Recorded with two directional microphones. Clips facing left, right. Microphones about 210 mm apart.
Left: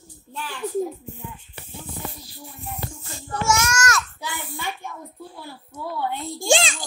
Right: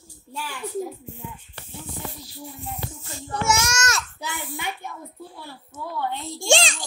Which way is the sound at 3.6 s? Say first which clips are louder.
Left 3 dB; 25° right (ahead or behind).